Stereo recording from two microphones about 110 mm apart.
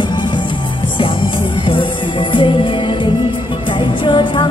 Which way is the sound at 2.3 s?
50° left (ahead or behind).